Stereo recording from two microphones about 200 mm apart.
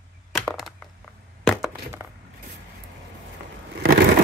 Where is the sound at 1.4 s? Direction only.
Centre (ahead or behind).